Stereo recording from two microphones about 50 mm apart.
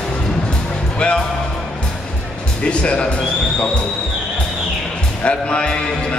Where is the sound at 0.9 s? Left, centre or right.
Centre.